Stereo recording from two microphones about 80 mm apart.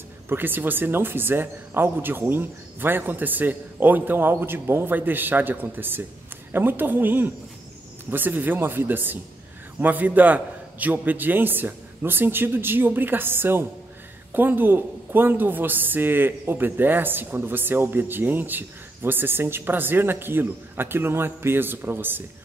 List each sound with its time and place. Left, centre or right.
0.3 s speech: right